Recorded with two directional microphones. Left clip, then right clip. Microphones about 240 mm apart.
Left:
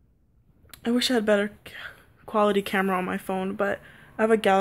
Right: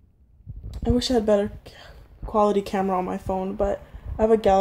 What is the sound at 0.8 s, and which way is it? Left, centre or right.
Speech, left.